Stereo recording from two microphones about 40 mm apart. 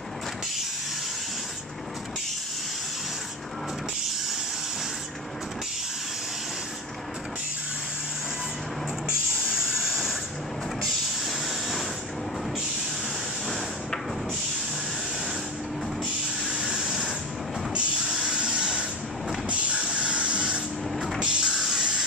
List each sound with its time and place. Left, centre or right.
9.0 s spray: centre
10.8 s a sound: centre
16.4 s vehicle: centre
17.7 s printer: centre
19.5 s spray: right
21.2 s music: centre